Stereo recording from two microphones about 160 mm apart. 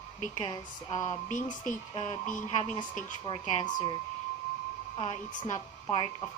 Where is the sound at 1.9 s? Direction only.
35° left (ahead or behind).